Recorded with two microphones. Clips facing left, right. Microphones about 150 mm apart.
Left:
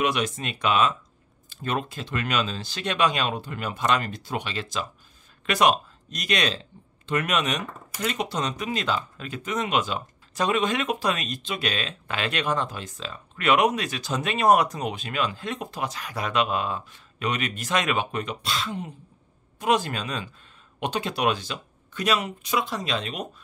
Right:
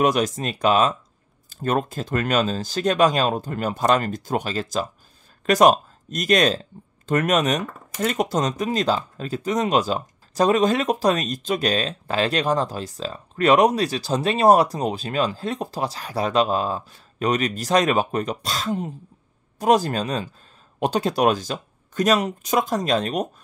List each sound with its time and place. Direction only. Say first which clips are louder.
0.0 s speech: right 5 dB; 40° right (ahead or behind)